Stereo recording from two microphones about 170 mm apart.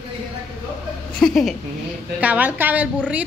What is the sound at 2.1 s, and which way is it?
A woman's voice, 10° right (ahead or behind).